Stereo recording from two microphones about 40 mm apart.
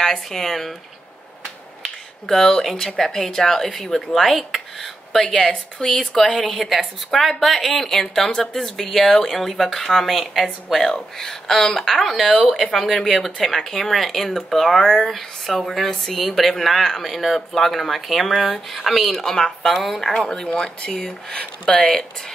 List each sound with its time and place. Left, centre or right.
0.0 s speech: centre
2.2 s speech: centre
12.7 s speech: centre
19.2 s speech: centre
20.4 s speech: left